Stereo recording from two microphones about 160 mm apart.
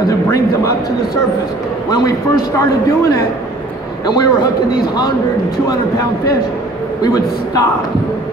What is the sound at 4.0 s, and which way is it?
Speech, 25° left (ahead or behind).